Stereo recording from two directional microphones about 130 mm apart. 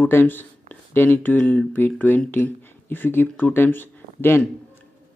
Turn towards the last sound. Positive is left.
turn(degrees=15)  # may be behind; listen again after turning